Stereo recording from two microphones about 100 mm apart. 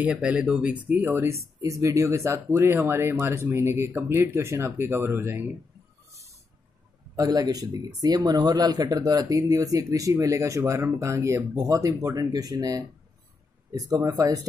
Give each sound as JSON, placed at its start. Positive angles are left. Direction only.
{"t": 0.0, "sound": "speech", "side_deg": -10}
{"t": 7.2, "sound": "speech", "side_deg": -40}